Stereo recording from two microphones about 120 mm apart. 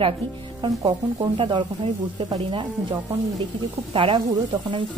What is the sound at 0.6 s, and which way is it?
Speech, 45° right (ahead or behind).